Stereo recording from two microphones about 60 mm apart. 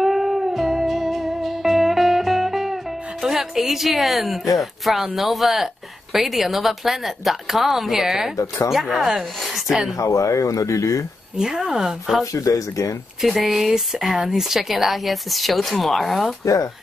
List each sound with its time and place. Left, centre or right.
0.0 s music: centre
4.6 s speech: centre
9.9 s speech: left
11.3 s speech: centre
12.3 s speech: left
13.2 s speech: centre